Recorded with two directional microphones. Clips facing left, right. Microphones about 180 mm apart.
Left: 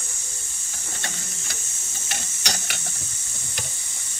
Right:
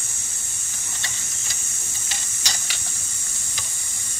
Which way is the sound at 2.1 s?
60° left (ahead or behind).